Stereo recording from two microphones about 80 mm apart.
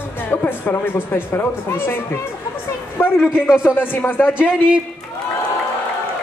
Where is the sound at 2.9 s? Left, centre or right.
Left.